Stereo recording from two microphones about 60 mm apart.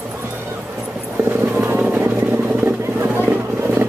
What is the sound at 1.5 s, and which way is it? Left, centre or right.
Vehicle, right.